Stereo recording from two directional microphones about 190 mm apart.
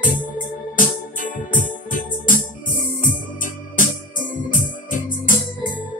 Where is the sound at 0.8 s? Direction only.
45° left (ahead or behind).